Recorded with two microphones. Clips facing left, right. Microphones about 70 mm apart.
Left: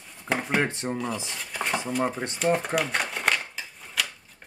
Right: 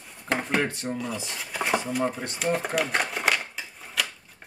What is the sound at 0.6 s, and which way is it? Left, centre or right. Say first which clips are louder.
Speech: left 1 dB; left.